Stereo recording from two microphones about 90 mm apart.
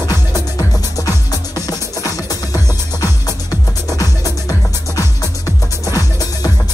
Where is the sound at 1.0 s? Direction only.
40° left (ahead or behind).